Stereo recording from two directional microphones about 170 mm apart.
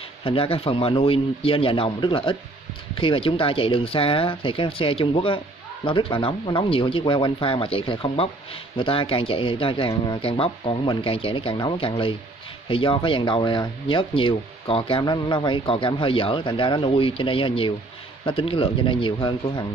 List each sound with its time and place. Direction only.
0.2 s speech: 30° left (ahead or behind)